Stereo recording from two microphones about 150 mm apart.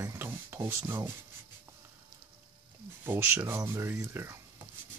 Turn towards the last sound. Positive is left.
turn(degrees=-15)  # may be behind; listen again after turning